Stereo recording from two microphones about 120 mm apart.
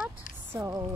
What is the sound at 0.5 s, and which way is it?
Speech, 25° right (ahead or behind).